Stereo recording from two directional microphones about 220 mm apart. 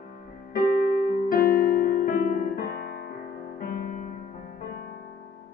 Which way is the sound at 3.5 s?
40° left (ahead or behind).